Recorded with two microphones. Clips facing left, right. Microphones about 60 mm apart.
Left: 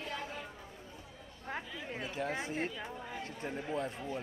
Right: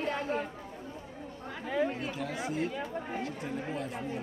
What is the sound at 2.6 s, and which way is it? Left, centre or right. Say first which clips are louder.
Speech: right 6 dB; right.